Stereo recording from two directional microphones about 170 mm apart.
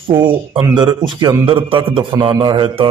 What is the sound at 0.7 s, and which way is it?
A man's voice, 25° right (ahead or behind).